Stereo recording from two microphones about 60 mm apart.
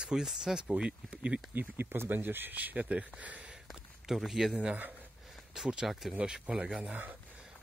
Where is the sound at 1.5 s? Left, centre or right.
Right.